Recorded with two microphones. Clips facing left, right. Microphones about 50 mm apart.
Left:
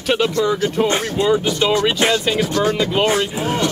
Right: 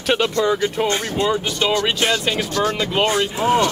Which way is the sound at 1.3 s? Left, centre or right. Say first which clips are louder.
Left 5 dB; centre.